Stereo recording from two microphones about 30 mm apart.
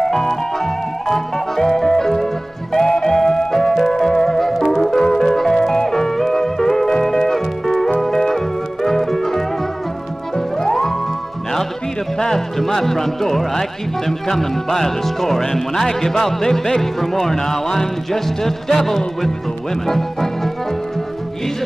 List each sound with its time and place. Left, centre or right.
0.0 s music: centre
12.2 s music: centre
13.6 s speech: centre